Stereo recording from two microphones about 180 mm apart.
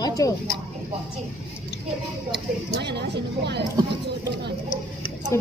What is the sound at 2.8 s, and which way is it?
Speech, 70° right (ahead or behind).